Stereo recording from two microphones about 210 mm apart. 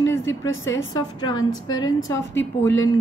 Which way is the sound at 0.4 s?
15° left (ahead or behind).